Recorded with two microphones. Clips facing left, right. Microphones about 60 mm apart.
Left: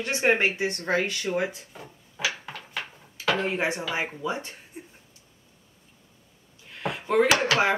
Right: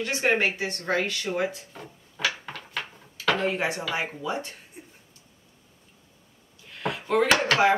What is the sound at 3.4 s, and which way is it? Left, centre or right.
Speech, left.